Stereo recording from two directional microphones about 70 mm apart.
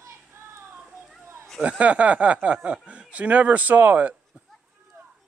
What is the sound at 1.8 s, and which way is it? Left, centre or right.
Speech, centre.